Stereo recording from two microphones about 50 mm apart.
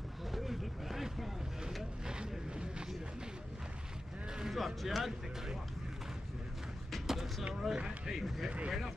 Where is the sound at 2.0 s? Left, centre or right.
Centre.